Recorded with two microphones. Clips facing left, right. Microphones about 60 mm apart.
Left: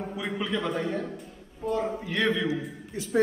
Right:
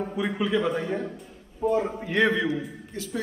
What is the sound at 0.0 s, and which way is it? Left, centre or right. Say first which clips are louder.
A man's voice: right 4 dB; centre.